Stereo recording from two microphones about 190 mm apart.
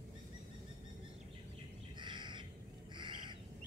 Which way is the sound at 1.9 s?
25° right (ahead or behind).